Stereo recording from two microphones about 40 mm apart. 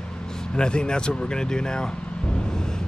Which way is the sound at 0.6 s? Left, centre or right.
Left.